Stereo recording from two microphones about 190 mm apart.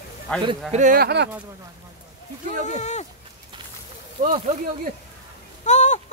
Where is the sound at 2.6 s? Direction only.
40° left (ahead or behind).